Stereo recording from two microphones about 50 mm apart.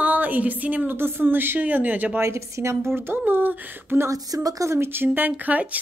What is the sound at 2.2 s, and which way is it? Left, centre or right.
Speech, right.